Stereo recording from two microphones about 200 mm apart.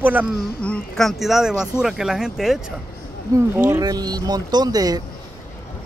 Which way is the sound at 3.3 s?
15° right (ahead or behind).